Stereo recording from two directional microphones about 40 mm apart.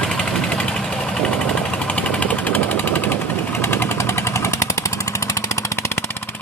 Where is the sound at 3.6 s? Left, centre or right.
Left.